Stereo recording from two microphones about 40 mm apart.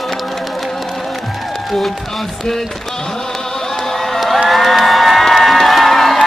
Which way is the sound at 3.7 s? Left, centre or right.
Centre.